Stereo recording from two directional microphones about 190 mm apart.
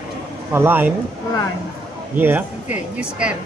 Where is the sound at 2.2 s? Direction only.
10° right (ahead or behind).